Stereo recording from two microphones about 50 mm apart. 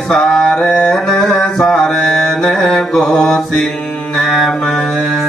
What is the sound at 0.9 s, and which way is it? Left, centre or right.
Mantra, centre.